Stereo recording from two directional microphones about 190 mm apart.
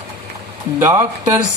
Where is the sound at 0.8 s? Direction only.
15° right (ahead or behind).